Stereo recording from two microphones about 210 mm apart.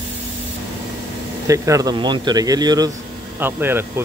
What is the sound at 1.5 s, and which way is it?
Speech, 15° right (ahead or behind).